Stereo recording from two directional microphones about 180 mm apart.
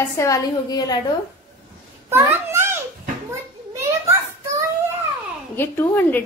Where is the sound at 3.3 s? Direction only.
15° right (ahead or behind).